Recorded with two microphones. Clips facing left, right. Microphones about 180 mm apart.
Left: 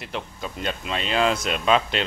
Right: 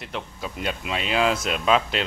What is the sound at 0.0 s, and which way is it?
Speech, centre (ahead or behind).